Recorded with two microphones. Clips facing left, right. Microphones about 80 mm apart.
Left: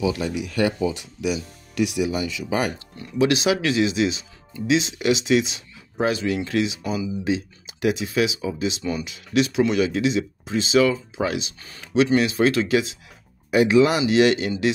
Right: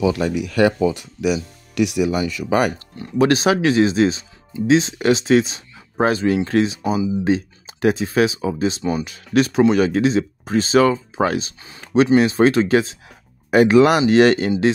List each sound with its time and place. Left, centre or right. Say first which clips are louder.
0.0 s speech: right 5 dB; right
3.2 s speech: right 4 dB; right
6.8 s speech: right 6 dB; right
7.2 s speech: right 5 dB; right
13.5 s speech: right 4 dB; right